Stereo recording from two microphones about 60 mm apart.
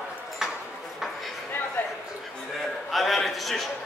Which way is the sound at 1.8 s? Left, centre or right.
Left.